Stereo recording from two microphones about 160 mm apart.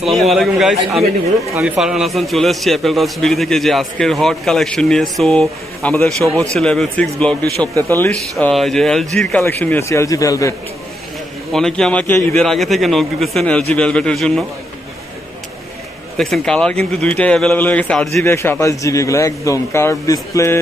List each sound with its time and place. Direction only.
0.0 s a man's voice: centre (ahead or behind); by 10.5 s 20° left (ahead or behind)
11.5 s a man's voice: 5° left (ahead or behind)
16.2 s a man's voice: 5° left (ahead or behind); by 20.5 s 20° left (ahead or behind)